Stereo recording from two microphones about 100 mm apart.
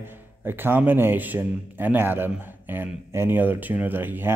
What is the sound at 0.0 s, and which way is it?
Speech, 20° right (ahead or behind).